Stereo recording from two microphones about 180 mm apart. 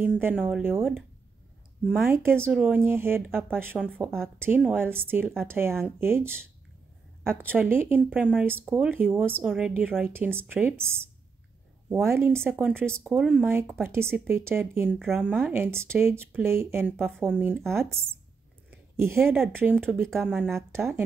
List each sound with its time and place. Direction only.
0.0 s speech: 10° right (ahead or behind)
1.9 s speech: 10° right (ahead or behind)
7.5 s speech: 10° right (ahead or behind)
18.9 s speech: 15° right (ahead or behind)
19.9 s speech: centre (ahead or behind)
20.4 s speech: 15° right (ahead or behind)